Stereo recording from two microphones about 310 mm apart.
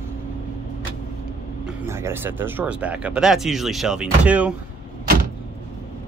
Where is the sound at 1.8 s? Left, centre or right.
Centre.